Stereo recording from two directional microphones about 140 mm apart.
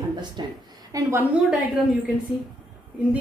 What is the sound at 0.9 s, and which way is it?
Speech, 15° right (ahead or behind).